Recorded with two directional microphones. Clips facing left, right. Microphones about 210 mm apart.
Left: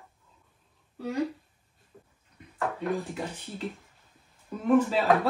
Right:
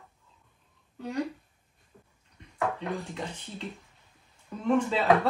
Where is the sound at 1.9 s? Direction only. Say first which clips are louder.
Left 3 dB; 5° left (ahead or behind).